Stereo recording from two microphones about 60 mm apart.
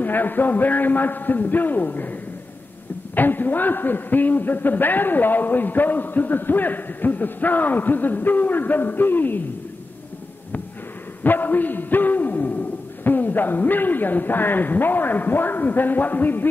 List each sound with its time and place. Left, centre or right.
0.0 s a man's voice: left
3.2 s a man's voice: left
11.2 s a man's voice: left